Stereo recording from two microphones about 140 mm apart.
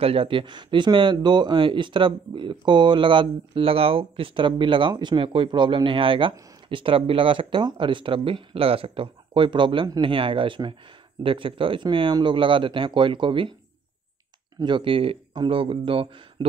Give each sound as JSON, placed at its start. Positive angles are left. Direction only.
{"t": 0.0, "sound": "speech", "side_deg": -40}
{"t": 14.6, "sound": "speech", "side_deg": -35}